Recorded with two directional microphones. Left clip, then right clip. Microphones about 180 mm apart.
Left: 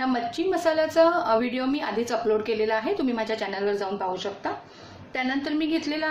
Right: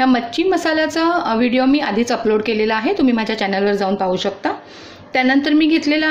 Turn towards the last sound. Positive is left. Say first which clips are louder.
# right 12 dB
turn(degrees=-45)  # may be behind; listen again after turning